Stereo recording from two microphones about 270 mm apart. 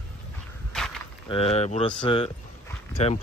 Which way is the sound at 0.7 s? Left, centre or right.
Centre.